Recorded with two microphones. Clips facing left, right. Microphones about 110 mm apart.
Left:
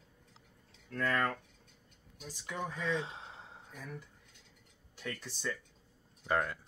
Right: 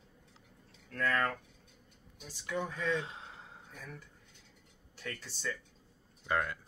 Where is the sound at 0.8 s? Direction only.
15° left (ahead or behind).